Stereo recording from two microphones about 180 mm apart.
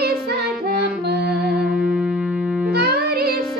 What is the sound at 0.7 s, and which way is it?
Music, 65° right (ahead or behind).